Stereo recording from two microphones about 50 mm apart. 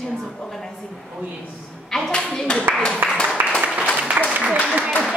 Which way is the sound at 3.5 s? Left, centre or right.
Centre.